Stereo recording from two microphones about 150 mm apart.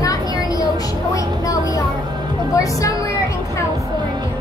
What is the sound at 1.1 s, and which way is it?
Vehicle, 20° left (ahead or behind).